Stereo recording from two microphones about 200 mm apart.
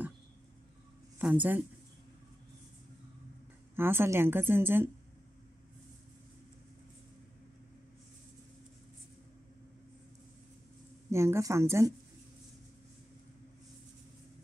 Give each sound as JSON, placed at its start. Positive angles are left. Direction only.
{"t": 1.1, "sound": "speech", "side_deg": -10}
{"t": 3.7, "sound": "a woman's voice", "side_deg": -10}
{"t": 11.1, "sound": "a woman's voice", "side_deg": -15}